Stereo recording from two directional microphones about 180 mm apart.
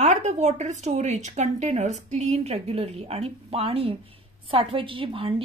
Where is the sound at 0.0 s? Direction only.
40° right (ahead or behind).